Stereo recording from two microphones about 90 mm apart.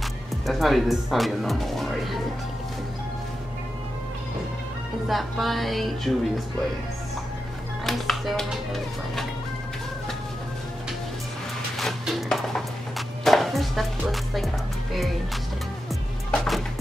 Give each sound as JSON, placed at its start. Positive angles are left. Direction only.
{"t": 0.5, "sound": "speech", "side_deg": 0}
{"t": 5.0, "sound": "speech", "side_deg": 0}
{"t": 7.8, "sound": "speech", "side_deg": 0}
{"t": 11.8, "sound": "a sound", "side_deg": 0}
{"t": 13.2, "sound": "music", "side_deg": 0}
{"t": 16.3, "sound": "music", "side_deg": 0}